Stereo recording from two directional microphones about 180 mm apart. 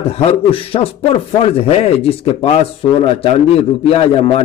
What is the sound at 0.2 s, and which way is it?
A man's voice, 35° left (ahead or behind).